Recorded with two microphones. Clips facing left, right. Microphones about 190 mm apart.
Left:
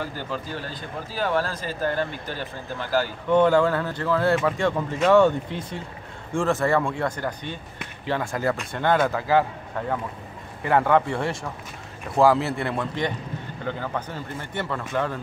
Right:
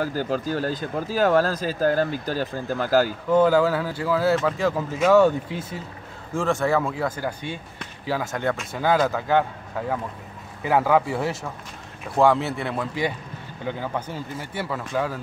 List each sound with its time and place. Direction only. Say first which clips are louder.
0.0 s speech: right 6 dB; 40° right (ahead or behind)
3.3 s a man's voice: left 1 dB; 5° right (ahead or behind)